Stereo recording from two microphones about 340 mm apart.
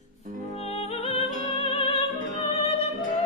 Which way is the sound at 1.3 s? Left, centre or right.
Right.